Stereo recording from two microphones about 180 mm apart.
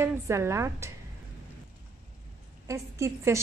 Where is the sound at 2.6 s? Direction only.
15° right (ahead or behind).